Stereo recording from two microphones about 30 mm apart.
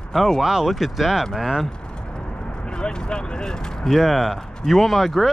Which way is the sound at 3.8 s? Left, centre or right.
Centre.